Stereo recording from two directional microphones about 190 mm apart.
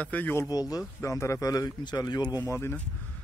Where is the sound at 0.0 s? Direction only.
10° left (ahead or behind).